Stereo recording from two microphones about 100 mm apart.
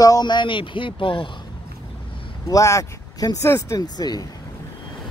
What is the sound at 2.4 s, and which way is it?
Speech, 35° left (ahead or behind).